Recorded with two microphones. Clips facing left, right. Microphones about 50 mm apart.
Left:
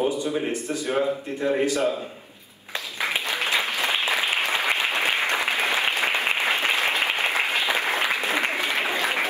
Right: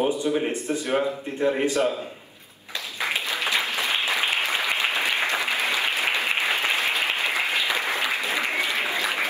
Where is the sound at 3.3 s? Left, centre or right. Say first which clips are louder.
Left 1 dB; left.